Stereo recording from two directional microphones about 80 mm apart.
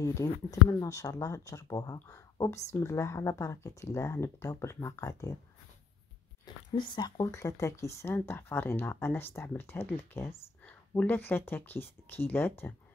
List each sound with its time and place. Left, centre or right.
0.0 s speech: left
2.7 s speech: left
6.4 s speech: left
10.6 s speech: centre